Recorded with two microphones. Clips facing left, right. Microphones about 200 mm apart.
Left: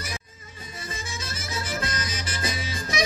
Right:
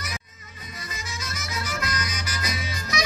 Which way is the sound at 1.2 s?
30° left (ahead or behind).